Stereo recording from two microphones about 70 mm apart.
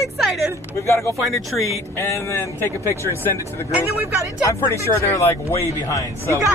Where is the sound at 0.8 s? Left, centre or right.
Left.